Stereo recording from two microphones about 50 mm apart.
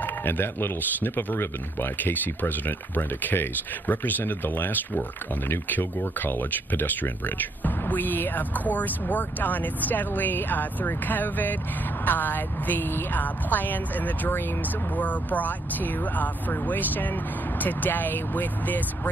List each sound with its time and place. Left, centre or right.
0.0 s a woman's voice: left